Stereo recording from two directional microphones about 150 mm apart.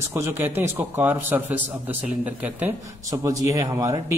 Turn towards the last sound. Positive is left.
turn(degrees=-20)  # may be behind; listen again after turning